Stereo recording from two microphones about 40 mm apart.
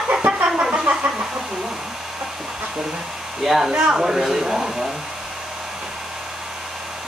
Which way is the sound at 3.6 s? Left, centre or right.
Right.